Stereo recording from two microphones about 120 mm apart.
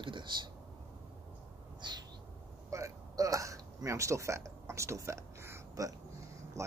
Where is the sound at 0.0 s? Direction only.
40° right (ahead or behind).